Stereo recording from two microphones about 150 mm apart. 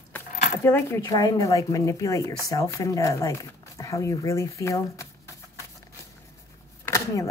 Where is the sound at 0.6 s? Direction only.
15° left (ahead or behind).